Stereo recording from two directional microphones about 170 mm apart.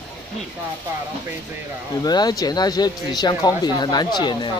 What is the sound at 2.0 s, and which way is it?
Speech, 25° left (ahead or behind).